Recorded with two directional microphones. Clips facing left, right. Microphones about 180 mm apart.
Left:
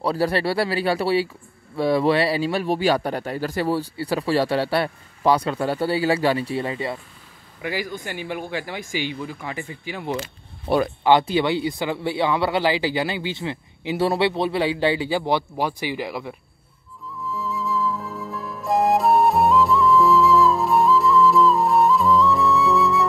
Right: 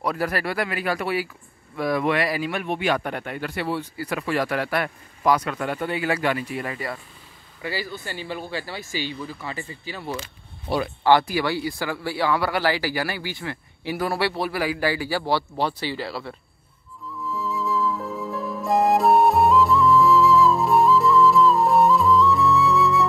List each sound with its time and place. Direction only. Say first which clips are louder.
0.0 s speech: left 4 dB; 30° left (ahead or behind)
17.3 s flute: even; centre (ahead or behind)